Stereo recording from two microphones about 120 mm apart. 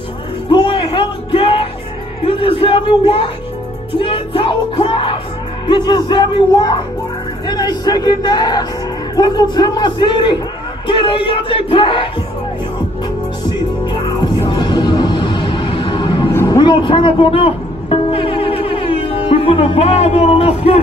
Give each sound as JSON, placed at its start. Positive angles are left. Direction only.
{"t": 0.5, "sound": "music", "side_deg": 40}
{"t": 5.7, "sound": "a man's voice", "side_deg": 40}
{"t": 10.9, "sound": "music", "side_deg": 45}
{"t": 14.5, "sound": "music", "side_deg": 40}
{"t": 19.2, "sound": "speech", "side_deg": 55}